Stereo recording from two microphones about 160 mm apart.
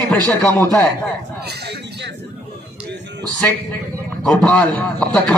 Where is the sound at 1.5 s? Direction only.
90° right.